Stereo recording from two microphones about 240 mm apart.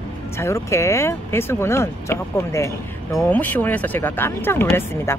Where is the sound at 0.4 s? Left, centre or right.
Centre.